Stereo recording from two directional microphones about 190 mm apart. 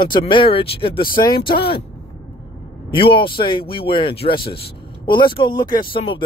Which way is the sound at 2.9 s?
25° left (ahead or behind).